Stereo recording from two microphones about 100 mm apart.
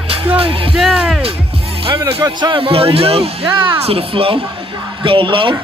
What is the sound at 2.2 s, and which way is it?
A man's voice, 50° right (ahead or behind).